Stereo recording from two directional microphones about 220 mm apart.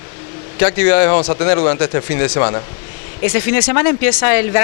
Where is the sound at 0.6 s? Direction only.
15° left (ahead or behind).